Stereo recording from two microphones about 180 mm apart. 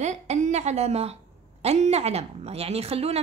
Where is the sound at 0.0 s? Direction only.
40° right (ahead or behind).